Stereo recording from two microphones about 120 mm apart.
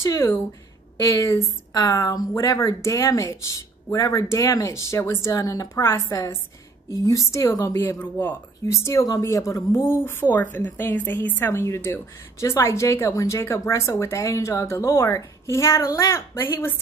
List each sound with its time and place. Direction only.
0.0 s a woman's voice: 25° left (ahead or behind)
8.7 s a woman's voice: 25° left (ahead or behind)